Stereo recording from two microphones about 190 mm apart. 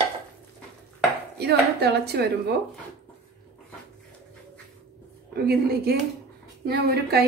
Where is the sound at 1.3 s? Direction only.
60° right (ahead or behind).